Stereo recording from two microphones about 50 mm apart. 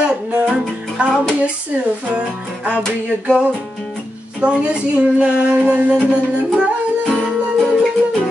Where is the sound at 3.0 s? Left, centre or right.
Right.